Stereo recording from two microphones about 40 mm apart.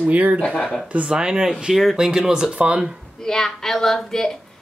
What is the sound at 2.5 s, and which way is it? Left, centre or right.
Speech, right.